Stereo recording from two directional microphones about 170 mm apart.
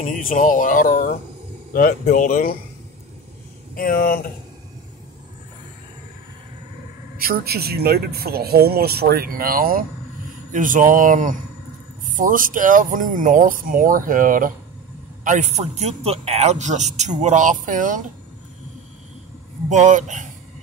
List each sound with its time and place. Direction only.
0.0 s speech: 50° left (ahead or behind)
3.7 s speech: 60° left (ahead or behind)
7.2 s a man's voice: 60° right (ahead or behind)
19.7 s a man's voice: 45° right (ahead or behind)